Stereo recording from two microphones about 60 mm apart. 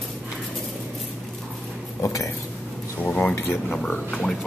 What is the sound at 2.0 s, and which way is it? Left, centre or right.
Speech, left.